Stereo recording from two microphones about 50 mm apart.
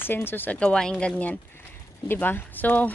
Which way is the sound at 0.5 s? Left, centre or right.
Centre.